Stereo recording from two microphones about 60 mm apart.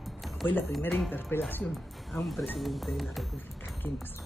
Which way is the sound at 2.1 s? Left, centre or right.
Left.